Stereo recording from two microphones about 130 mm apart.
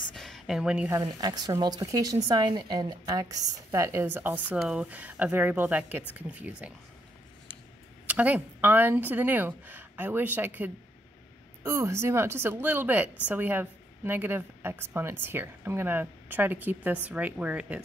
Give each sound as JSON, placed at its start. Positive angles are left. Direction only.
{"t": 0.1, "sound": "a sound", "side_deg": 0}
{"t": 0.8, "sound": "a woman's voice", "side_deg": -25}
{"t": 8.1, "sound": "a woman's voice", "side_deg": -10}